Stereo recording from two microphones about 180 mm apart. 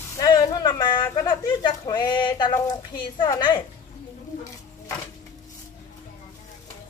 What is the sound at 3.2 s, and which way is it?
Speech, 25° left (ahead or behind).